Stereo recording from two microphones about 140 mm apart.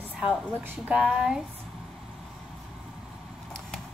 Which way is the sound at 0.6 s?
15° right (ahead or behind).